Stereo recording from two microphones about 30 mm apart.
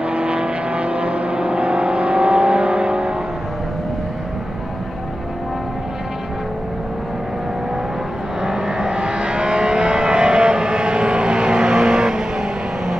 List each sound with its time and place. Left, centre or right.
0.1 s vehicle: right
8.4 s vehicle: centre